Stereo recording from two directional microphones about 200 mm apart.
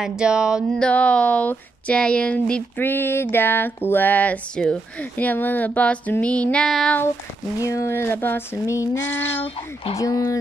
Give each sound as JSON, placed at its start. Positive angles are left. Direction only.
{"t": 0.0, "sound": "speech", "side_deg": -5}
{"t": 9.9, "sound": "speech", "side_deg": 15}